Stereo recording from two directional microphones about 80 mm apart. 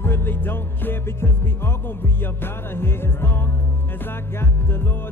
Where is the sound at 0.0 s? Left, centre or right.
Left.